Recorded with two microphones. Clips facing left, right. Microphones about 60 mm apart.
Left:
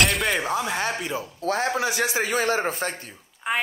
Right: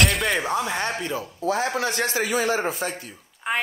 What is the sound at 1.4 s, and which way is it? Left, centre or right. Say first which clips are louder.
A man's voice: even; left.